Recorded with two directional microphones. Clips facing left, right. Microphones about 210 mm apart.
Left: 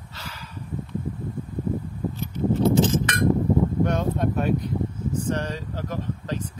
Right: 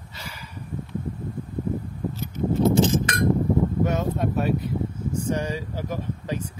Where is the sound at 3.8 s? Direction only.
5° right (ahead or behind).